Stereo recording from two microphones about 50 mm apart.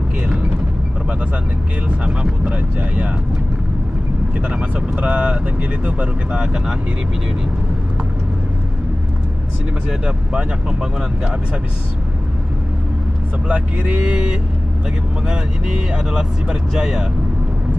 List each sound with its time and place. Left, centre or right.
2.0 s speech: right
4.4 s speech: centre
9.8 s speech: centre
13.5 s speech: right